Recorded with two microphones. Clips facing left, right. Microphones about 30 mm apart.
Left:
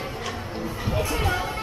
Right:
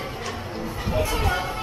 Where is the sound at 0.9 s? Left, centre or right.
Centre.